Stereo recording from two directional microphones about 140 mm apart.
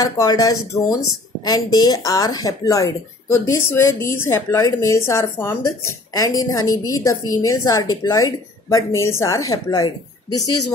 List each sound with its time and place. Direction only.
0.0 s a woman's voice: 25° left (ahead or behind)